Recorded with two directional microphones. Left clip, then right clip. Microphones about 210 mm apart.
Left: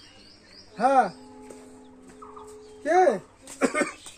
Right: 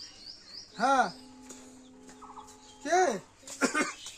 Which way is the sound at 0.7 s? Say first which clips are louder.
Left 5 dB; 25° left (ahead or behind).